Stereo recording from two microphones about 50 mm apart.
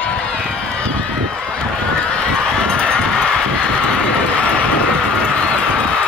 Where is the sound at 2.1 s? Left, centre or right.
Centre.